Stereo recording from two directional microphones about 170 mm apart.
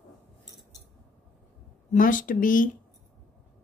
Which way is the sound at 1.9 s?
50° left (ahead or behind).